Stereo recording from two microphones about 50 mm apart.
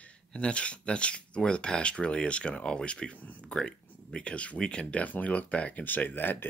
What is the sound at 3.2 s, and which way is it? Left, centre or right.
Speech, left.